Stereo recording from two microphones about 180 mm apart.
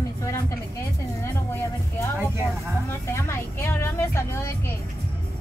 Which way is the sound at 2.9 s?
15° left (ahead or behind).